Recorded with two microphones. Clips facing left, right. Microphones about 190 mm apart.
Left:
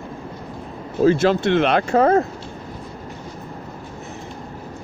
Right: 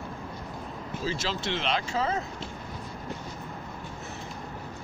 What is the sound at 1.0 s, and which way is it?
Speech, 55° left (ahead or behind).